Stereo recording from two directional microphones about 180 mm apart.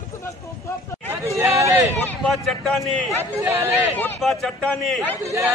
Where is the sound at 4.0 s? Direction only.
5° left (ahead or behind).